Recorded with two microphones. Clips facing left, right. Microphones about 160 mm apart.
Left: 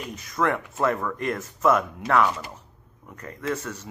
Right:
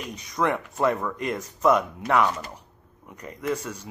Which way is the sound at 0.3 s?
15° right (ahead or behind).